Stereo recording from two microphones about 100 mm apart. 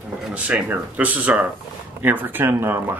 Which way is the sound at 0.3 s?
15° right (ahead or behind).